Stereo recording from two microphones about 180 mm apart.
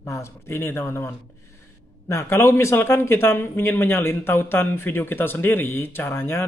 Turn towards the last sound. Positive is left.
turn(degrees=15)  # may be behind; listen again after turning